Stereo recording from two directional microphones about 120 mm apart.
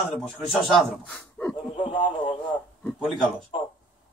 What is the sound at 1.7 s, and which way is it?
Speech, 40° left (ahead or behind).